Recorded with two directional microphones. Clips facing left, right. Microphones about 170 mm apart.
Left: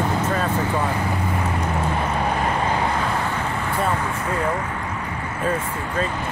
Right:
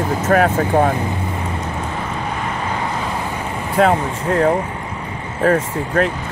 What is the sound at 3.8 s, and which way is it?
Speech, 85° right.